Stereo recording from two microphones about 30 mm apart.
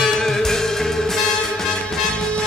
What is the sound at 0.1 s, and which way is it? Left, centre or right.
Music, centre.